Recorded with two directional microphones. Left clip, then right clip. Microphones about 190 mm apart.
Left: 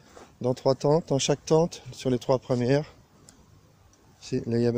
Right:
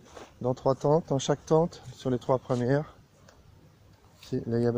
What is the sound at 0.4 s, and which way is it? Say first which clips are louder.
Speech: left 2 dB; 25° left (ahead or behind).